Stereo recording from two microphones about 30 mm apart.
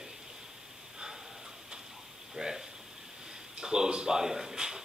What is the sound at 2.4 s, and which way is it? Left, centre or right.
A man's voice, centre.